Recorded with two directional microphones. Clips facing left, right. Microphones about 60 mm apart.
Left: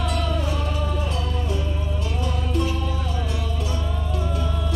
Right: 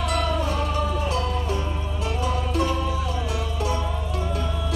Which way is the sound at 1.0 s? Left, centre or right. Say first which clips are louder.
Right 3 dB; right.